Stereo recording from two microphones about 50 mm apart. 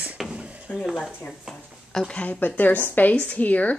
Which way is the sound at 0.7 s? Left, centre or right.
Left.